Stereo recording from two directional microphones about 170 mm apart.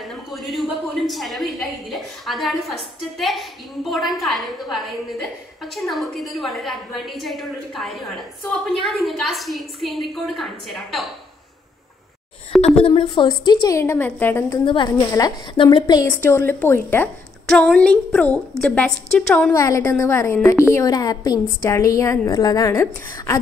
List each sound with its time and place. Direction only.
0.1 s a woman's voice: centre (ahead or behind)
12.6 s a woman's voice: 35° left (ahead or behind); by 14.6 s 15° left (ahead or behind)
14.6 s a woman's voice: 30° left (ahead or behind)
16.1 s a woman's voice: 10° left (ahead or behind)
19.5 s a woman's voice: 20° left (ahead or behind)